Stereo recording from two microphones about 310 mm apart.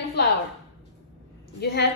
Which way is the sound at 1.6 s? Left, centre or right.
Left.